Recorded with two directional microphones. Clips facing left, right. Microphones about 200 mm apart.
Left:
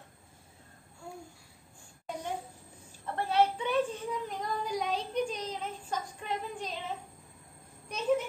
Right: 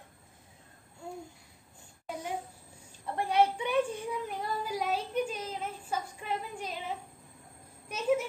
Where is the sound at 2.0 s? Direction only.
5° right (ahead or behind).